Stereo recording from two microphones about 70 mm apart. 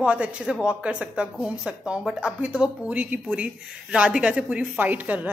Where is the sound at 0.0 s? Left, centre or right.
Centre.